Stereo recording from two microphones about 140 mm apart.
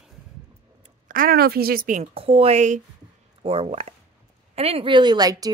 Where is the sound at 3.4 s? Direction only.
45° right (ahead or behind).